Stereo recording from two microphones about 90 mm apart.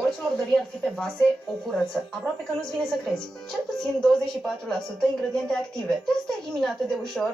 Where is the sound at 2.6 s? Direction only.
5° left (ahead or behind).